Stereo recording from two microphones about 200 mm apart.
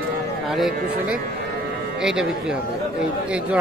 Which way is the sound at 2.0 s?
5° right (ahead or behind).